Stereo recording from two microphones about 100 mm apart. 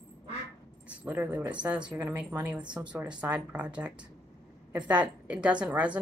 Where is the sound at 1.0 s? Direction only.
20° right (ahead or behind).